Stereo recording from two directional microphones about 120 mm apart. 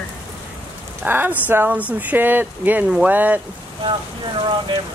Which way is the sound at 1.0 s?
15° right (ahead or behind).